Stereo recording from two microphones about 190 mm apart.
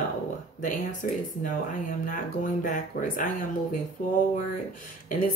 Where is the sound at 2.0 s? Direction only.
45° left (ahead or behind).